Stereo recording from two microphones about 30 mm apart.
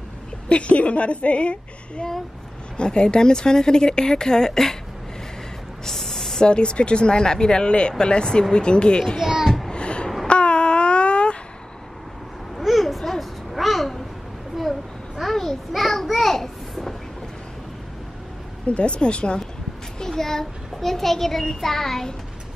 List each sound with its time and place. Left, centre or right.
0.5 s a woman's voice: left; by 4.7 s centre
5.9 s a sound: centre
6.4 s speech: left
9.2 s a child's voice: centre
9.7 s a sound: left
12.5 s babbling: centre
15.2 s a sound: centre
18.7 s speech: left
20.0 s a child's voice: centre